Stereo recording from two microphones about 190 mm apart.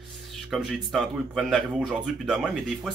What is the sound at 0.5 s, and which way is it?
Speech, centre (ahead or behind).